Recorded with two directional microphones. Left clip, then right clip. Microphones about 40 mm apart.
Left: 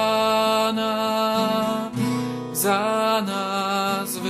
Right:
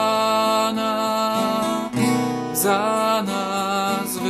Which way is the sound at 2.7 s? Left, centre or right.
Left.